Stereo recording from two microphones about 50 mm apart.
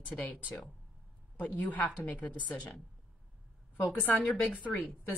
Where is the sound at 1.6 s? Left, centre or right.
Left.